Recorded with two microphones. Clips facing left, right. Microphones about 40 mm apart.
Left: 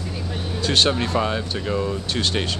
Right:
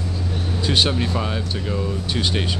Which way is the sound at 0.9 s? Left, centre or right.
Centre.